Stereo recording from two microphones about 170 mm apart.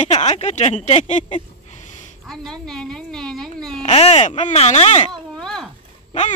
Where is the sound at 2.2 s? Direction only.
5° left (ahead or behind).